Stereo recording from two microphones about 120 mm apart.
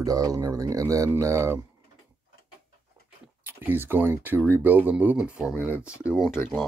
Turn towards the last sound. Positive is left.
turn(degrees=0)  # may be behind; listen again after turning